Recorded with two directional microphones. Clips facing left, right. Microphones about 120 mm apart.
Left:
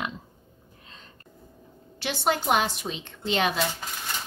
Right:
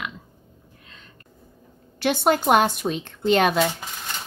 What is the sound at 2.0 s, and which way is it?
Speech, 50° right (ahead or behind).